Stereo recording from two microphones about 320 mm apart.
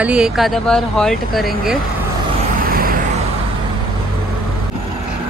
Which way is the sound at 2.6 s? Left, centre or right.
Right.